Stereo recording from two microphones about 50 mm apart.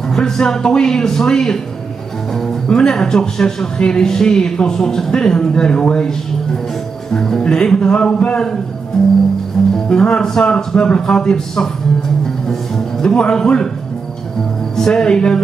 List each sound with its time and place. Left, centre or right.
0.1 s speech: centre
9.0 s speech: centre
12.4 s music: centre
14.8 s speech: centre